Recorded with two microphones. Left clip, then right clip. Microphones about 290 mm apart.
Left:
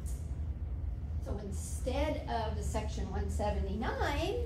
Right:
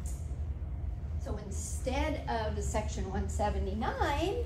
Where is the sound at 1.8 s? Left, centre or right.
Right.